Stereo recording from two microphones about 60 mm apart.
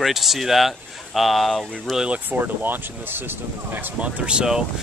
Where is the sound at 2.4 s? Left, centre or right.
Right.